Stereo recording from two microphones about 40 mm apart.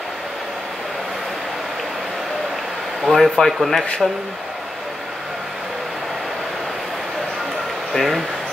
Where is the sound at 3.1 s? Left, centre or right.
Centre.